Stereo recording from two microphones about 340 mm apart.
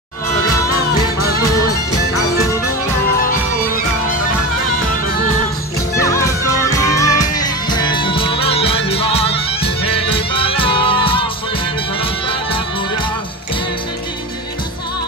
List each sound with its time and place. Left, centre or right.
5.9 s music: centre